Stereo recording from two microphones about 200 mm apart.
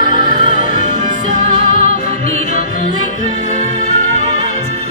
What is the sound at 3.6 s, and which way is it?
Music, 35° right (ahead or behind).